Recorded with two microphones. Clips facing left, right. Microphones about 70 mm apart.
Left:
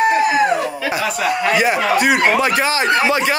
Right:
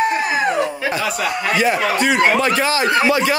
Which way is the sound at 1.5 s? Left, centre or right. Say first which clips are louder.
Even; centre.